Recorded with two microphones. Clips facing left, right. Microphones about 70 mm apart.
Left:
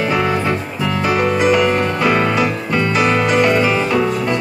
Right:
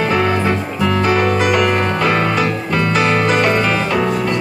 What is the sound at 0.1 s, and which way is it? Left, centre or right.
Music, centre.